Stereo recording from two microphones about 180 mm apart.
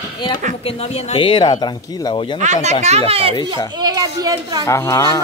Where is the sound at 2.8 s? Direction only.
35° right (ahead or behind).